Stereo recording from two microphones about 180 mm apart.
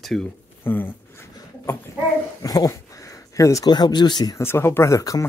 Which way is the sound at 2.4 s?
20° left (ahead or behind).